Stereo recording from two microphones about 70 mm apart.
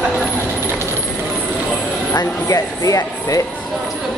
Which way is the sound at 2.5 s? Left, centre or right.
Left.